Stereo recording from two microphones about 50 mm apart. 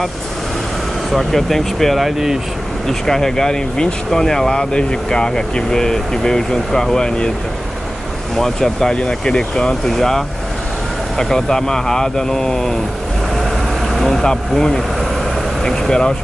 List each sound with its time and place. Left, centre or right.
1.1 s speech: centre
2.9 s speech: centre
8.4 s speech: centre
9.8 s speech: centre
13.9 s vehicle: centre
14.5 s speech: centre